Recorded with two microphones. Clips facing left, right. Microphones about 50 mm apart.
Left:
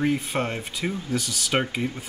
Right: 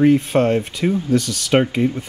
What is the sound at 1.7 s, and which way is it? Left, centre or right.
Speech, centre.